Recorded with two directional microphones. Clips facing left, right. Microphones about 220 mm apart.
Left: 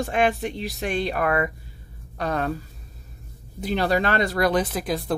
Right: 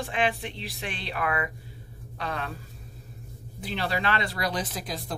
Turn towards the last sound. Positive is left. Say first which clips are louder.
# left 9 dB
turn(degrees=60)  # may be behind; listen again after turning